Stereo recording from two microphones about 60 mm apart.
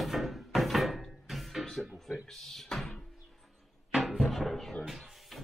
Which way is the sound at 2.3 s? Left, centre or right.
Centre.